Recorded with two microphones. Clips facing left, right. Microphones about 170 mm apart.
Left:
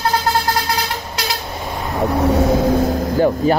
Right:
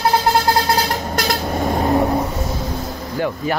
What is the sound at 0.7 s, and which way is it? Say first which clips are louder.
Vehicle: right 4 dB; 40° right (ahead or behind).